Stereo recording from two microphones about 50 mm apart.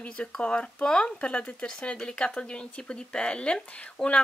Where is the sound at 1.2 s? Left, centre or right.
Left.